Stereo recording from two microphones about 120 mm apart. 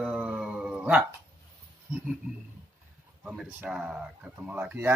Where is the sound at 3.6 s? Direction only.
5° right (ahead or behind).